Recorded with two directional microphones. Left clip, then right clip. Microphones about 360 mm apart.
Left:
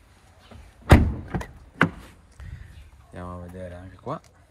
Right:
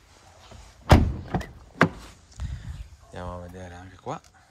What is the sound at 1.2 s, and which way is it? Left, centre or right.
Vehicle, right.